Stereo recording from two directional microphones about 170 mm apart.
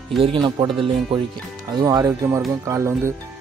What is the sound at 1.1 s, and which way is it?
Speech, 30° right (ahead or behind).